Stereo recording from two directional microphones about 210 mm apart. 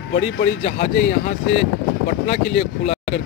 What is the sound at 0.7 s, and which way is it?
Speech, 40° left (ahead or behind).